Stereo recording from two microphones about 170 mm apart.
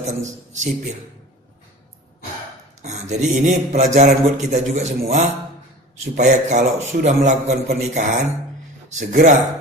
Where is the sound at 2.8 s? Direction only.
45° right (ahead or behind).